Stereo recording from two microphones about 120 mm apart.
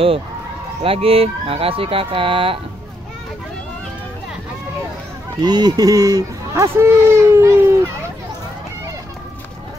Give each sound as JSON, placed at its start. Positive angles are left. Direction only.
{"t": 0.8, "sound": "speech", "side_deg": -50}
{"t": 5.4, "sound": "speech", "side_deg": -35}